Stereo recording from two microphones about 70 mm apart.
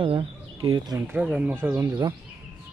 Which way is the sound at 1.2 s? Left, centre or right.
Centre.